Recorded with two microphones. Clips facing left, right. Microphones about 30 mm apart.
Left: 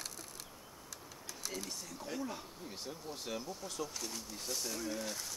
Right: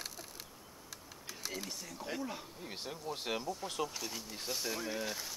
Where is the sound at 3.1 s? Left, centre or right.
Right.